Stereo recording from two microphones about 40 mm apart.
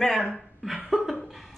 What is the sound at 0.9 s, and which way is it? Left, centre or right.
Speech, centre.